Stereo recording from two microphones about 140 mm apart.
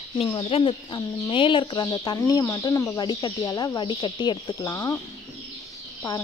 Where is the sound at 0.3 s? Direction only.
40° left (ahead or behind); by 4.9 s 25° left (ahead or behind).